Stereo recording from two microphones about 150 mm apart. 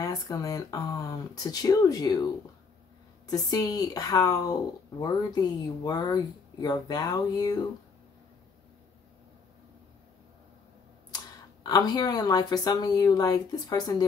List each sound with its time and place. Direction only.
0.0 s speech: 25° left (ahead or behind)
3.3 s speech: 25° left (ahead or behind)
11.6 s speech: 25° left (ahead or behind)